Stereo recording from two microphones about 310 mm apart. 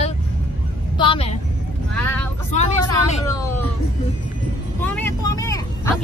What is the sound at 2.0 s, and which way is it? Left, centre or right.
Vehicle, centre.